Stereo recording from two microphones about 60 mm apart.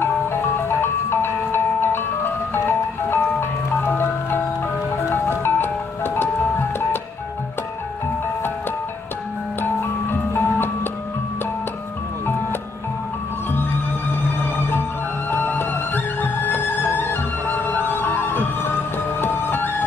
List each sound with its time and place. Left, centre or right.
0.0 s music: left
10.3 s music: left
15.3 s music: left